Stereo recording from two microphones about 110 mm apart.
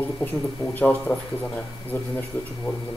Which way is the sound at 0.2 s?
15° left (ahead or behind).